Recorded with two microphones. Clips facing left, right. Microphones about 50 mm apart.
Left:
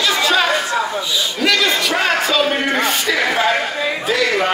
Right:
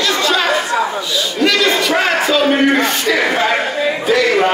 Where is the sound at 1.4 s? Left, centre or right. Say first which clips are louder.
Right 3 dB; centre.